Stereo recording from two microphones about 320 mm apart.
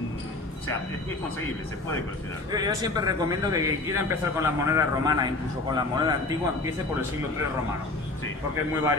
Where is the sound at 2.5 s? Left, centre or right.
Centre.